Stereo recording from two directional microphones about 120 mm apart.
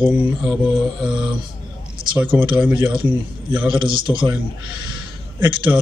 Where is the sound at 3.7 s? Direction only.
45° right (ahead or behind).